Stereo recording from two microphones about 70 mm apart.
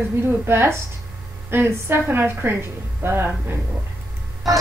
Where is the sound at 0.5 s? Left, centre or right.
Right.